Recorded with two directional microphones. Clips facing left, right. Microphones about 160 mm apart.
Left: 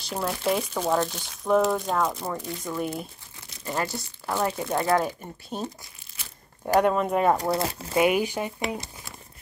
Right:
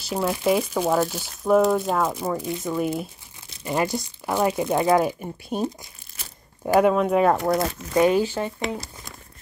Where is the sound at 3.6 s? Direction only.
15° right (ahead or behind).